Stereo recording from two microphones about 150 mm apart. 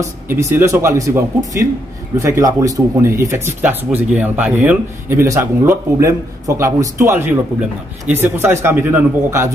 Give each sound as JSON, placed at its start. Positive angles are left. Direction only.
{"t": 0.0, "sound": "speech", "side_deg": -15}